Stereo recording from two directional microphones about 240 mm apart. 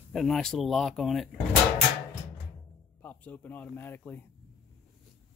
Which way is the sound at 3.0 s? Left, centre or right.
Centre.